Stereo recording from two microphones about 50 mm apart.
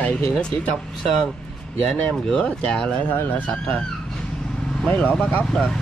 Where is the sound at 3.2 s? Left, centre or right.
Left.